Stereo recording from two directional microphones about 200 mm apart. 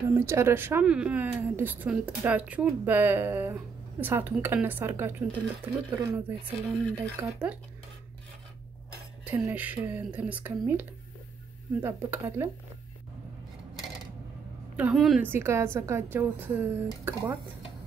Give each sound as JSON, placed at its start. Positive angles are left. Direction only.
{"t": 0.1, "sound": "speech", "side_deg": -10}
{"t": 6.1, "sound": "a woman's voice", "side_deg": -10}
{"t": 9.2, "sound": "speech", "side_deg": -10}
{"t": 14.8, "sound": "a woman's voice", "side_deg": -5}
{"t": 15.2, "sound": "speech", "side_deg": -10}